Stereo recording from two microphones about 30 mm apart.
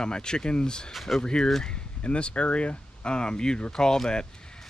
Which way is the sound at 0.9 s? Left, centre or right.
Centre.